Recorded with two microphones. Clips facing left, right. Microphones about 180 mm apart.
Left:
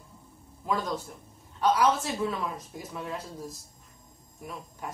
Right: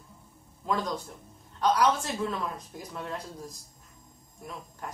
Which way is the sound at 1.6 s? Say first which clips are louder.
Left 1 dB; 5° left (ahead or behind).